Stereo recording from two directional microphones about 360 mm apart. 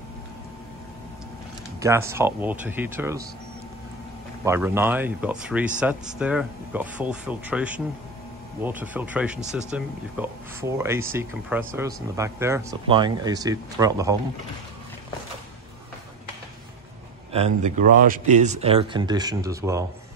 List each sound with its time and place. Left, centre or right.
1.8 s speech: centre
4.5 s speech: centre
17.3 s speech: centre